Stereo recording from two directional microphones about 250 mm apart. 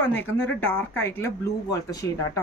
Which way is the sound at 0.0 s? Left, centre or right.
Centre.